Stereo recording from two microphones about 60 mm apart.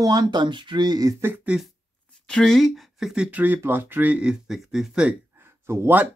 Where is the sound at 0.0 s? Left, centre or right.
Right.